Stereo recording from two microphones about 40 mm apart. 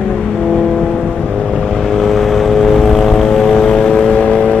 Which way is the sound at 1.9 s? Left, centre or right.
Centre.